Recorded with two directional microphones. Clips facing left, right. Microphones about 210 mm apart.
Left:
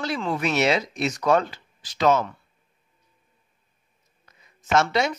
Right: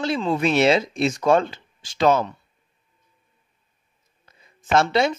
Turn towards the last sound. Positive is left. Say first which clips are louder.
# right 3 dB
turn(degrees=-30)  # may be behind; listen again after turning